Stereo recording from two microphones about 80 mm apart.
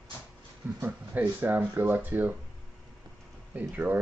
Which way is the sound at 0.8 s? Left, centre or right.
Right.